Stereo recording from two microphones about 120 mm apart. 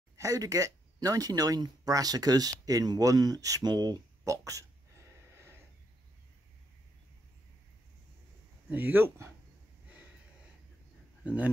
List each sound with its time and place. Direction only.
0.2 s speech: 30° right (ahead or behind)
8.6 s speech: 15° right (ahead or behind)